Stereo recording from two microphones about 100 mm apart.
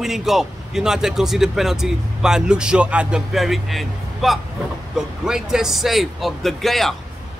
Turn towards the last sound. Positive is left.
turn(degrees=0)  # may be behind; listen again after turning